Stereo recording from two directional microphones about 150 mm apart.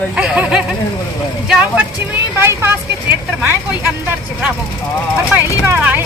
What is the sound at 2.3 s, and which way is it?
Vehicle, 15° right (ahead or behind).